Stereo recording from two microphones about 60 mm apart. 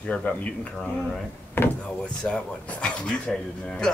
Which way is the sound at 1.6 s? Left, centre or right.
Left.